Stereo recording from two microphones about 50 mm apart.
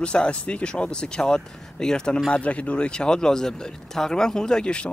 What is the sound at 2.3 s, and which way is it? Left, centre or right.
Speech, left.